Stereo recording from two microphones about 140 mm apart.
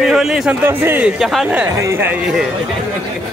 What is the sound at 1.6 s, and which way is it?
Speech, 20° right (ahead or behind).